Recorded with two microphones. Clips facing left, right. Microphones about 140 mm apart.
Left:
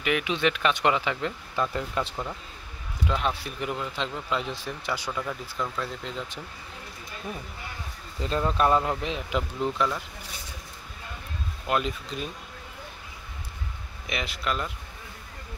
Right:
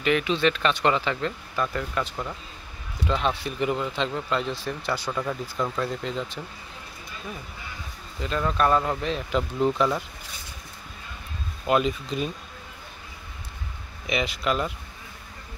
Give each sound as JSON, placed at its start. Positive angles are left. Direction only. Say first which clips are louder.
{"t": 0.0, "sound": "speech", "louder": "right 3 dB", "side_deg": 10}
{"t": 3.1, "sound": "speech", "louder": "right 3 dB", "side_deg": 5}
{"t": 5.2, "sound": "speech", "louder": "right 4 dB", "side_deg": -15}
{"t": 5.8, "sound": "speech", "louder": "right 5 dB", "side_deg": 0}
{"t": 8.2, "sound": "speech", "louder": "even", "side_deg": 25}
{"t": 9.6, "sound": "speech", "louder": "right 5 dB", "side_deg": -5}
{"t": 11.6, "sound": "speech", "louder": "right 5 dB", "side_deg": -5}
{"t": 14.0, "sound": "speech", "louder": "right 5 dB", "side_deg": 0}